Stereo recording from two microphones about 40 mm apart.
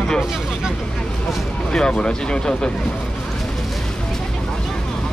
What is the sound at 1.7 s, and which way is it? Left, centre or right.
Speech, left.